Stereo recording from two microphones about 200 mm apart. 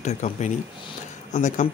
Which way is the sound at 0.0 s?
35° left (ahead or behind).